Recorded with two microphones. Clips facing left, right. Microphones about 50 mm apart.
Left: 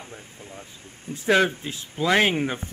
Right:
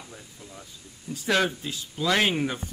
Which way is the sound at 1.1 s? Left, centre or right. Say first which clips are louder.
Left 4 dB; left.